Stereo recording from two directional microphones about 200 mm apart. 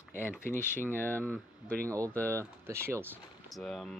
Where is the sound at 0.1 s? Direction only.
10° left (ahead or behind).